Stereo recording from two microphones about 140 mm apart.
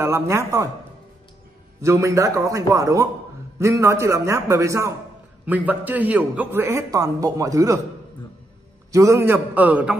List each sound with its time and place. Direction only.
0.0 s a man's voice: 20° right (ahead or behind)
1.8 s a man's voice: 20° right (ahead or behind)
8.9 s a man's voice: 20° right (ahead or behind)